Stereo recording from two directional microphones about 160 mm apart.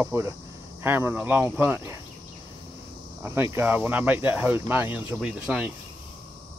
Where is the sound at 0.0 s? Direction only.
15° right (ahead or behind).